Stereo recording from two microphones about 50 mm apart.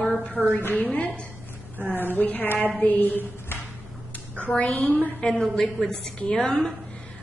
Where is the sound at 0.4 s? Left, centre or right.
Centre.